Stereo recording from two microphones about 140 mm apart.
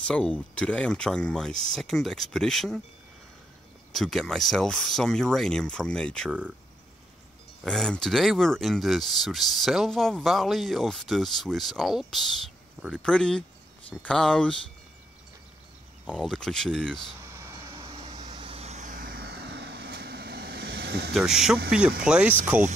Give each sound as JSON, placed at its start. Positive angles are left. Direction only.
{"t": 0.0, "sound": "speech", "side_deg": 5}
{"t": 3.9, "sound": "speech", "side_deg": 0}
{"t": 7.6, "sound": "speech", "side_deg": 5}
{"t": 16.1, "sound": "speech", "side_deg": 5}
{"t": 17.2, "sound": "a sound", "side_deg": -20}
{"t": 17.8, "sound": "vehicle", "side_deg": -45}
{"t": 21.1, "sound": "speech", "side_deg": -5}